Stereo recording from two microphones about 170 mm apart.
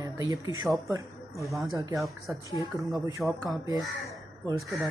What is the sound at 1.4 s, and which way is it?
Speech, centre (ahead or behind).